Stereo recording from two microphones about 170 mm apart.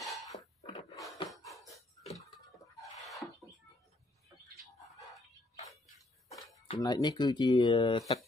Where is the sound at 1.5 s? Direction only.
Centre (ahead or behind).